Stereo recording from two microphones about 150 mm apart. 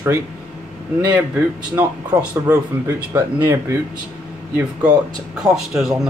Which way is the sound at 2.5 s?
15° right (ahead or behind).